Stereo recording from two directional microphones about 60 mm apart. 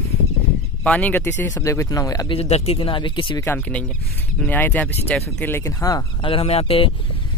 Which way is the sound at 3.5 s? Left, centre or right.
Left.